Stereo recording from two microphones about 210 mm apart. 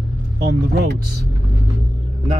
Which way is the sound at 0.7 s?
50° right (ahead or behind).